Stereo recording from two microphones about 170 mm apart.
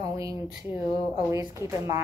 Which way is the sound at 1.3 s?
15° right (ahead or behind).